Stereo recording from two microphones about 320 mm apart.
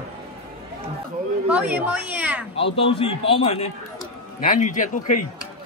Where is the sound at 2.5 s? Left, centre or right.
Centre.